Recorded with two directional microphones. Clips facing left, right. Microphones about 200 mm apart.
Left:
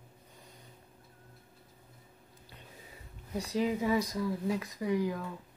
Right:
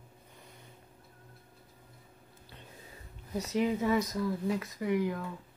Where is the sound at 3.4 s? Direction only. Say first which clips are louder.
Right 1 dB; 15° left (ahead or behind).